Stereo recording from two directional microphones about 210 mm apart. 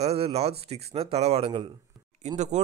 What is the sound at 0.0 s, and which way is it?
Speech, 30° right (ahead or behind).